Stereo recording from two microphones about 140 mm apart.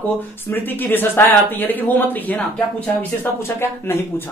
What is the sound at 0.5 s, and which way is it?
Speech, 15° left (ahead or behind).